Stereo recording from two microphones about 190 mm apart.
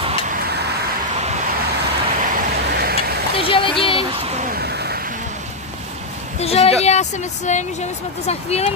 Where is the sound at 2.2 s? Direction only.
45° right (ahead or behind).